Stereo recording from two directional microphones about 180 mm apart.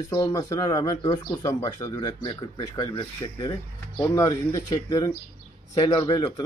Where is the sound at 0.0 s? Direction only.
20° left (ahead or behind).